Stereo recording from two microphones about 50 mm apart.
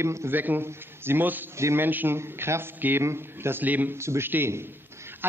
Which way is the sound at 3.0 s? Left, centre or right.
Right.